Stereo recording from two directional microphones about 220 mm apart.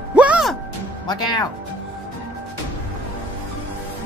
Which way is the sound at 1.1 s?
20° left (ahead or behind).